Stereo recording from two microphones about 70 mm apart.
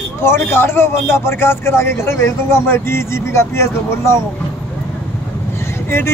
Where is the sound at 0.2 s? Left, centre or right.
Left.